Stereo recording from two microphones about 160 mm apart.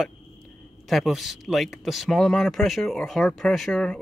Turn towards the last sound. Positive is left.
turn(degrees=5)  # may be behind; listen again after turning